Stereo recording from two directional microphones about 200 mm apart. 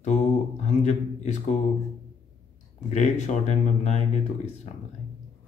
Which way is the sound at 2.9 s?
35° left (ahead or behind).